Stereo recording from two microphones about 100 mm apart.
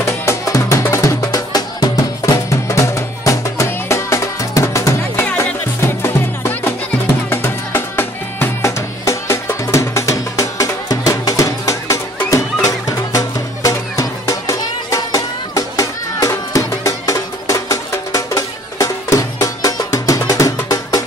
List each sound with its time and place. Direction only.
0.2 s music: 30° left (ahead or behind)